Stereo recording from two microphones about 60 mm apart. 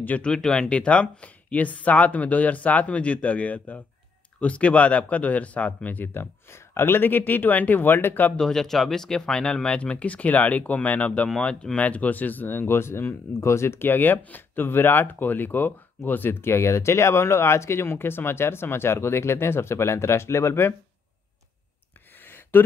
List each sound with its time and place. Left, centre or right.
0.2 s speech: centre; by 6.2 s left
6.5 s speech: left
8.4 s speech: centre; by 11.2 s left
11.2 s speech: centre; by 20.7 s left
22.2 s a sound: left